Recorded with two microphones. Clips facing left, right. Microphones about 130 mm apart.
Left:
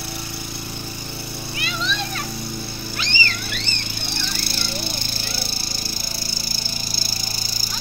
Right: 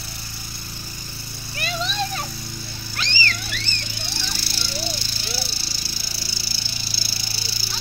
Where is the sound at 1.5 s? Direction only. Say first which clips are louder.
Right 1 dB; 45° right (ahead or behind).